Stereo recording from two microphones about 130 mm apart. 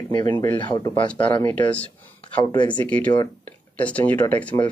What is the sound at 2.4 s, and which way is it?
Speech, 35° left (ahead or behind).